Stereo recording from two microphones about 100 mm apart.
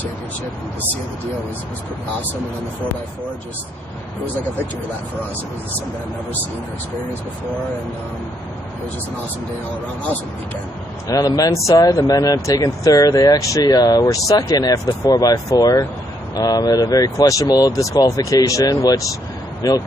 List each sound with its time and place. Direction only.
11.1 s speech: 40° left (ahead or behind)